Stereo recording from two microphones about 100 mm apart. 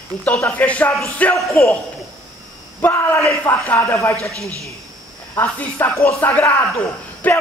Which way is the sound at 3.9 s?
30° left (ahead or behind).